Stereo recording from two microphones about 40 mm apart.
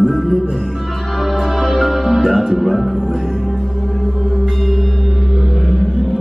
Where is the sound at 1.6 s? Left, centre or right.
Centre.